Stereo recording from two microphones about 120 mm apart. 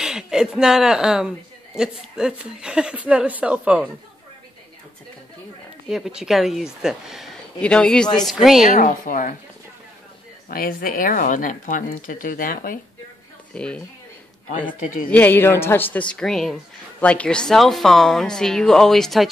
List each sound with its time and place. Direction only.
0.0 s speech: 5° right (ahead or behind)
5.9 s speech: 5° right (ahead or behind)
7.6 s speech: 10° left (ahead or behind)
8.6 s speech: 90° left
11.2 s speech: 90° left
13.5 s speech: 5° left (ahead or behind)